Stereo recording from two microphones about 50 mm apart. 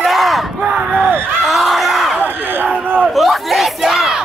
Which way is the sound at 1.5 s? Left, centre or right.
Centre.